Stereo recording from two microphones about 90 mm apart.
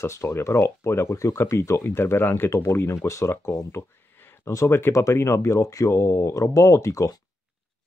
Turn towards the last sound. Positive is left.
turn(degrees=35)  # may be behind; listen again after turning